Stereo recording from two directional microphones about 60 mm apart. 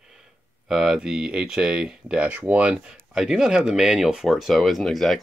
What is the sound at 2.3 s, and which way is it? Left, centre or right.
Speech, right.